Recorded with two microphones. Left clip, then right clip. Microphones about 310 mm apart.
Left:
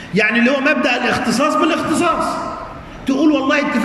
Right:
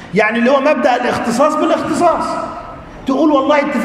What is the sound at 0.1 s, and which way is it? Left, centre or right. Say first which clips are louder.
A man's voice: right 3 dB; centre.